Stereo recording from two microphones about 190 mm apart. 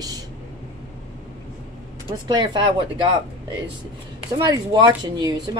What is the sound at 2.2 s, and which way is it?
Speech, 25° right (ahead or behind).